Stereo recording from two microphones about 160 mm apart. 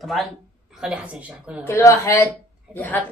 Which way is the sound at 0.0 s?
Centre (ahead or behind).